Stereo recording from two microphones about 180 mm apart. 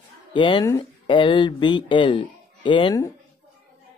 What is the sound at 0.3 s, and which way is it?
Speech, 25° left (ahead or behind).